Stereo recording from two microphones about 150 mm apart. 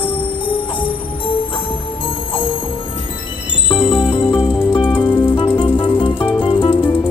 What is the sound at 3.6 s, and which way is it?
Music, 35° left (ahead or behind).